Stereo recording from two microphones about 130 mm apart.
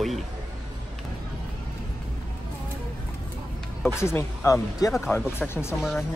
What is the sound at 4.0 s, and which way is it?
Speech, 20° left (ahead or behind).